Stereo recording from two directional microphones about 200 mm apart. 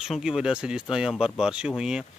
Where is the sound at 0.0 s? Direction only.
5° right (ahead or behind).